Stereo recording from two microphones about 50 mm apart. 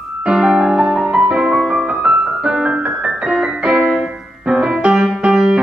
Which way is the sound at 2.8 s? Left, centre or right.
Right.